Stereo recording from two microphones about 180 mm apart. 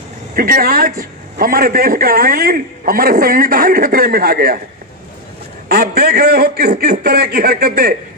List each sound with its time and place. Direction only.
0.4 s a man's voice: 55° right (ahead or behind)
5.7 s a man's voice: 55° right (ahead or behind)